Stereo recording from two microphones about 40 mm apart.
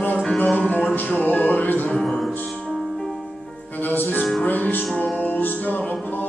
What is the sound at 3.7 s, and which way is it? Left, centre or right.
Music, left.